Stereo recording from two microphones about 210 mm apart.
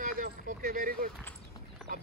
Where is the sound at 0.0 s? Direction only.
40° right (ahead or behind).